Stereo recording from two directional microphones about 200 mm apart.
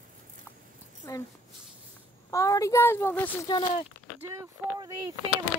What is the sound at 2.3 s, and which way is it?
A woman's voice, 15° left (ahead or behind).